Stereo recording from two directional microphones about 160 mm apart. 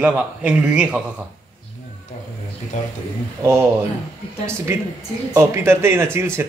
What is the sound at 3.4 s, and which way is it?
Speech, 15° right (ahead or behind).